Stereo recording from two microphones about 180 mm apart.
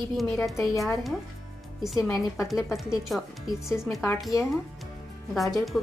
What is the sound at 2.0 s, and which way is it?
Speech, 15° left (ahead or behind).